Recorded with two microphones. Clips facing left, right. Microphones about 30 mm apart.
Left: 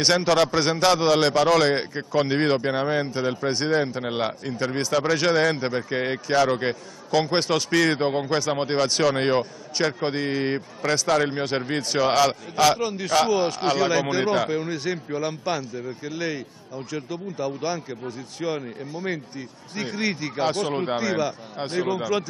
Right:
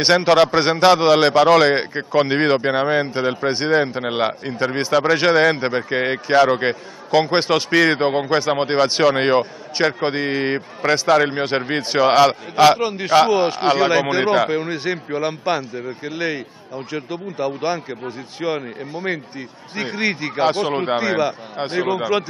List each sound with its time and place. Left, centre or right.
0.0 s a man's voice: right